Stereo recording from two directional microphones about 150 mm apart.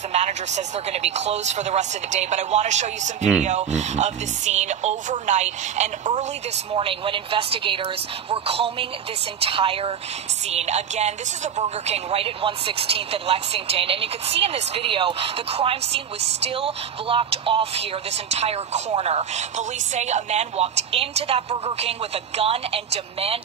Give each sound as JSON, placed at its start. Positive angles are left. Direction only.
{"t": 0.1, "sound": "speech", "side_deg": -50}
{"t": 6.7, "sound": "a woman's voice", "side_deg": -35}